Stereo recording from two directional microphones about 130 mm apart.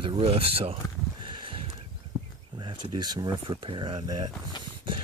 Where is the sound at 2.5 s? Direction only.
35° right (ahead or behind).